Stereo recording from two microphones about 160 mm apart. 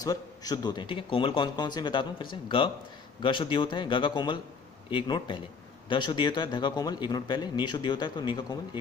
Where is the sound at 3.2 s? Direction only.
30° left (ahead or behind).